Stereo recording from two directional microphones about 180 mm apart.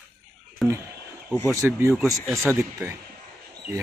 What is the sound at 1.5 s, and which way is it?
Speech, 15° right (ahead or behind).